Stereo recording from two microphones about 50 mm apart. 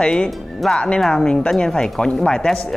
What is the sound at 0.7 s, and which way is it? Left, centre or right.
Speech, centre.